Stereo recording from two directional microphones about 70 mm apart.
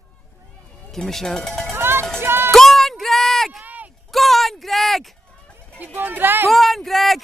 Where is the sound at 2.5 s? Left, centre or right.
Centre.